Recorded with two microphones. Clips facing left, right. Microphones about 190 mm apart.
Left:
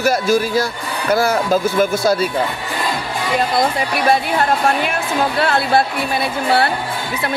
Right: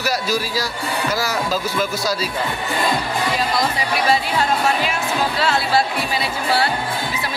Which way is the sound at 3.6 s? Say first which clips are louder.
Left 3 dB; 55° left (ahead or behind).